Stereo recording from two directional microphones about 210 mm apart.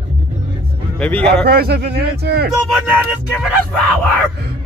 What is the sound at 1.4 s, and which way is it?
Speech, 50° right (ahead or behind).